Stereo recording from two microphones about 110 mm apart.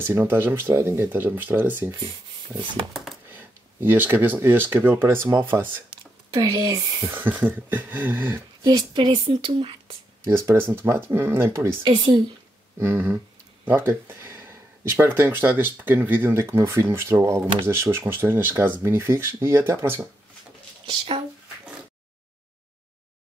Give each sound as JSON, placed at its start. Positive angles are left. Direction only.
{"t": 0.0, "sound": "speech", "side_deg": -20}
{"t": 3.3, "sound": "speech", "side_deg": -20}
{"t": 6.3, "sound": "speech", "side_deg": -30}
{"t": 7.1, "sound": "a sound", "side_deg": -15}
{"t": 8.6, "sound": "speech", "side_deg": -45}
{"t": 10.2, "sound": "speech", "side_deg": -25}
{"t": 11.8, "sound": "speech", "side_deg": -60}
{"t": 12.7, "sound": "speech", "side_deg": -20}
{"t": 20.8, "sound": "speech", "side_deg": -55}